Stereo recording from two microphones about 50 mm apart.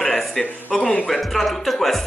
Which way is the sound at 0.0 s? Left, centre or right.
Centre.